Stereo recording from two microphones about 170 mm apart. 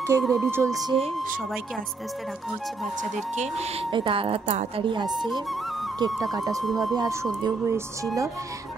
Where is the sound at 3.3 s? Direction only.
40° right (ahead or behind).